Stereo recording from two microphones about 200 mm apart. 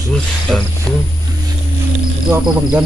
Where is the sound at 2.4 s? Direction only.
5° right (ahead or behind).